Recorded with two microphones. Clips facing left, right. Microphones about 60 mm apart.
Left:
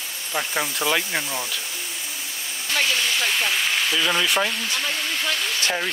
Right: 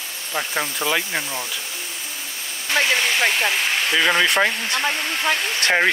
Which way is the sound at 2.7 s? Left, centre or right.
Right.